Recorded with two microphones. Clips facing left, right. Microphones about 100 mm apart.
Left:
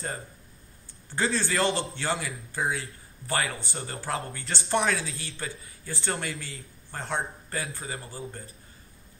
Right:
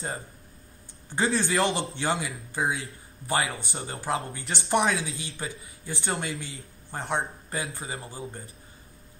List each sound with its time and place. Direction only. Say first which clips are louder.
1.1 s speech: right 2 dB; 20° right (ahead or behind)